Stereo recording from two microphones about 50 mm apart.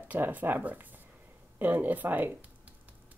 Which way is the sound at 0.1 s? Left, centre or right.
Right.